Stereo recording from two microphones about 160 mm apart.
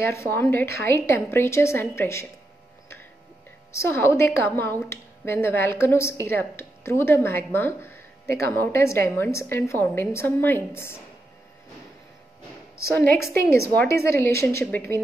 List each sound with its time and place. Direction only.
0.0 s a woman's voice: 15° left (ahead or behind)
3.7 s a woman's voice: 15° left (ahead or behind)
12.8 s a woman's voice: 15° left (ahead or behind)